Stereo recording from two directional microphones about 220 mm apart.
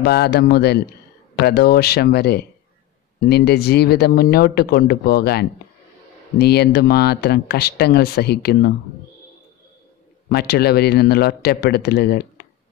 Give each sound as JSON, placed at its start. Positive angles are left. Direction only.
{"t": 0.0, "sound": "speech", "side_deg": 45}
{"t": 10.3, "sound": "speech", "side_deg": 45}